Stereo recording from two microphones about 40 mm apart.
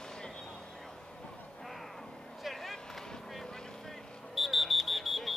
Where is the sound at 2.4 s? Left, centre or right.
Centre.